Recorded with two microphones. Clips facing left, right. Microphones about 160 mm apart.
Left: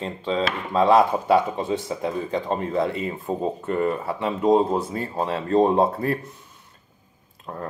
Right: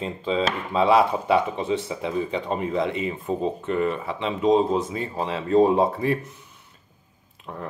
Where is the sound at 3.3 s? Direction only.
40° left (ahead or behind).